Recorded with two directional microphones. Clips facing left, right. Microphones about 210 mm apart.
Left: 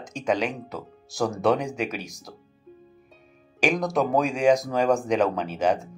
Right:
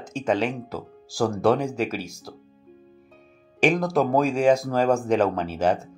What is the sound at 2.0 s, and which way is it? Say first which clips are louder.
Speech: right 3 dB; 15° left (ahead or behind).